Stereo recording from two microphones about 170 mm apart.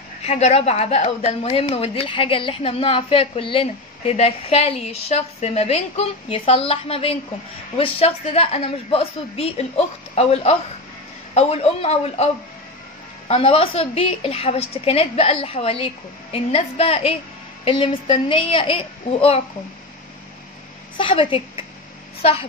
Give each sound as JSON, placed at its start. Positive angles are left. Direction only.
{"t": 0.2, "sound": "a woman's voice", "side_deg": 40}
{"t": 13.3, "sound": "a woman's voice", "side_deg": 35}
{"t": 21.0, "sound": "a woman's voice", "side_deg": 30}